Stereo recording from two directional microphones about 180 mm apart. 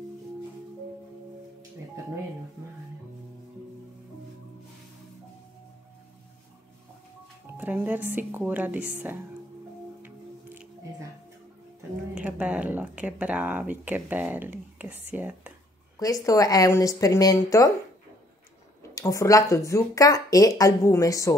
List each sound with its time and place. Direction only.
7.5 s speech: 10° right (ahead or behind)
10.0 s music: 10° right (ahead or behind)
12.2 s speech: 5° right (ahead or behind)
16.0 s speech: 20° left (ahead or behind)
18.8 s speech: 15° left (ahead or behind)